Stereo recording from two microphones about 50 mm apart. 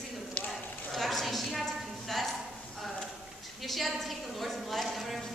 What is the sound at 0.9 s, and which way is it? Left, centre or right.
Clip-clop, centre.